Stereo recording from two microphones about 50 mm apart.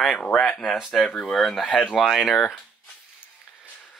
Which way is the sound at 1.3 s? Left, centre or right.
Centre.